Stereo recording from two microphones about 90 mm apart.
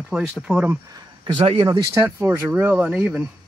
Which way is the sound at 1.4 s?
85° right.